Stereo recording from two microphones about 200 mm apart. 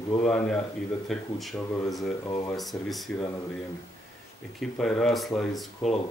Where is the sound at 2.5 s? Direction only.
Centre (ahead or behind).